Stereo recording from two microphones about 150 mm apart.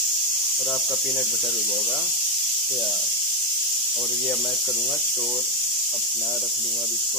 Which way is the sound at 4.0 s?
Centre (ahead or behind).